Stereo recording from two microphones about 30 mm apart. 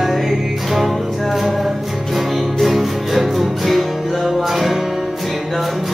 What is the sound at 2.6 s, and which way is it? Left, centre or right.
Music, centre.